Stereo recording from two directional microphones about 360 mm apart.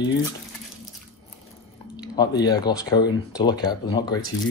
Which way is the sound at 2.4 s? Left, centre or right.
Centre.